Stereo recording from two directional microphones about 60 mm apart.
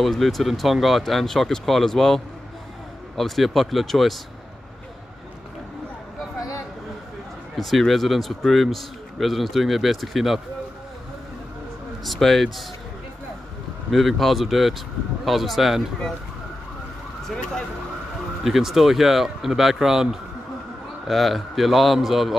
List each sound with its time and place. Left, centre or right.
0.0 s speech: centre
6.3 s a sound: left
7.5 s speech: centre
12.0 s speech: centre
13.8 s speech: centre
18.4 s speech: centre